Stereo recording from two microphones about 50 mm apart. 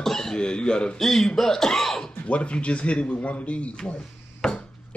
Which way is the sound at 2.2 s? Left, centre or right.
Left.